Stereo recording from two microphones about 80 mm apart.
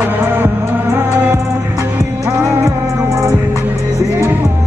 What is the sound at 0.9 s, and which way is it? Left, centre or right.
Music, right.